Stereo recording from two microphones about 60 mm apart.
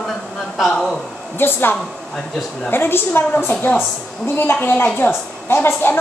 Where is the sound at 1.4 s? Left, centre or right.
Left.